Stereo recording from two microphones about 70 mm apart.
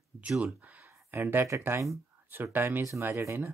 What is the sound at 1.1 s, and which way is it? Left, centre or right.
Speech, right.